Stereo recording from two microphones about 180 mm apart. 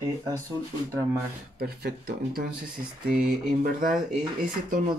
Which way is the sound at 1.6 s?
60° right (ahead or behind).